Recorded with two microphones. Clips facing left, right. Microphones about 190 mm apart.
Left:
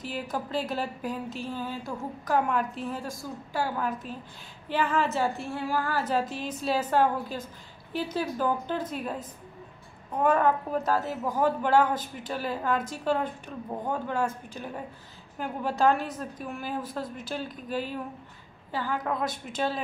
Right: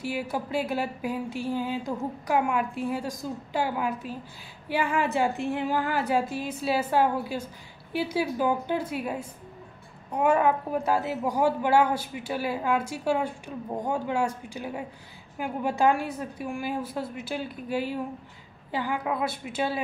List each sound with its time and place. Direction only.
0.0 s speech: 10° right (ahead or behind)